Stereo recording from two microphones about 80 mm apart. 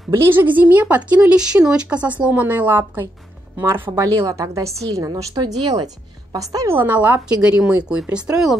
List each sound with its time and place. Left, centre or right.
0.1 s speech: right
4.0 s a woman's voice: right
5.1 s speech: right
6.3 s a woman's voice: right
6.7 s speech: right; by 8.5 s centre